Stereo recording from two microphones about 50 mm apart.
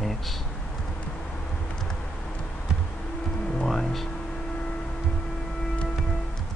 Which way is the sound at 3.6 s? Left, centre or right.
Centre.